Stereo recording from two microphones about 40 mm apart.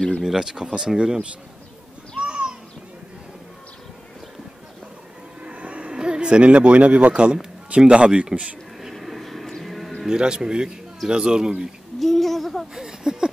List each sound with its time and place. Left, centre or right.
0.2 s speech: centre
2.1 s a sound: right
5.4 s a sound: right
5.9 s a man's voice: right
8.9 s vehicle: centre
9.5 s music: centre
10.0 s a man's voice: centre
12.0 s a sound: centre
12.7 s speech: centre